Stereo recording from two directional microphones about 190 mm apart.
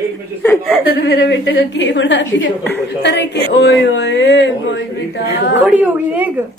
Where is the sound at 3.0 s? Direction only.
65° left (ahead or behind).